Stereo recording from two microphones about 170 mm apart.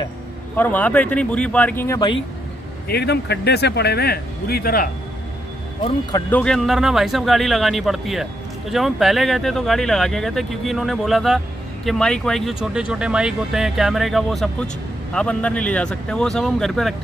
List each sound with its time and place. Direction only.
0.6 s speech: 10° left (ahead or behind)
2.9 s speech: 70° left (ahead or behind)
6.3 s speech: 5° left (ahead or behind)